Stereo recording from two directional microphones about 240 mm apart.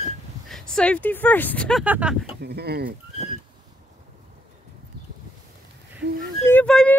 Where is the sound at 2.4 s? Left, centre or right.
Right.